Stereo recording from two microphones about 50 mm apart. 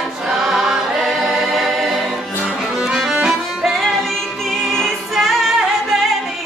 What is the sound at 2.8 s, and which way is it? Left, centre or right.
Music, centre.